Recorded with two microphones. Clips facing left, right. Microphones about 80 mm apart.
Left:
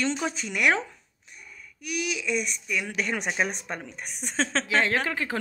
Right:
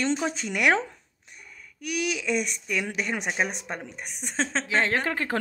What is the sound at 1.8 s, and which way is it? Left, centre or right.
Speech, right.